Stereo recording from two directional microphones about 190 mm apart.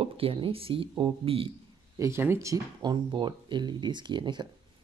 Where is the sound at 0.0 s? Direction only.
30° right (ahead or behind).